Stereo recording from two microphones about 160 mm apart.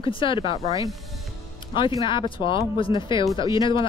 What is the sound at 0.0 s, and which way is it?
Speech, 30° left (ahead or behind).